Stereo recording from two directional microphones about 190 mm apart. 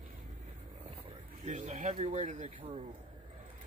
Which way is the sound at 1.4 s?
35° right (ahead or behind).